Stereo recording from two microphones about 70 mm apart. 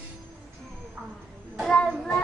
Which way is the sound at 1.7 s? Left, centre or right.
Centre.